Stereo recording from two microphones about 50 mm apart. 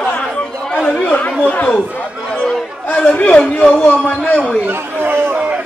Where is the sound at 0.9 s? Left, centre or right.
Left.